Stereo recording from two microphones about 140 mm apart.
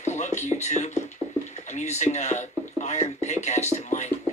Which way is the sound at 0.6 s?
55° left (ahead or behind).